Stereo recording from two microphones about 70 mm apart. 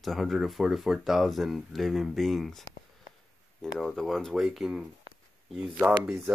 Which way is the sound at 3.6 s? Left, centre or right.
Centre.